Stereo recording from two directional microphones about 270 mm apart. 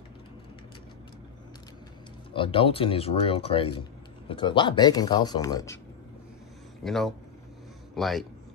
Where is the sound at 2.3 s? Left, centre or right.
Centre.